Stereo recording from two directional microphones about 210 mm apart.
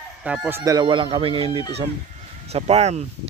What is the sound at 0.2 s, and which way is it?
Speech, 5° right (ahead or behind).